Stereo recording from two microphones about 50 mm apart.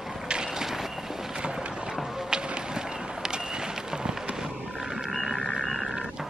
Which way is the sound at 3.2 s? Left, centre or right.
Centre.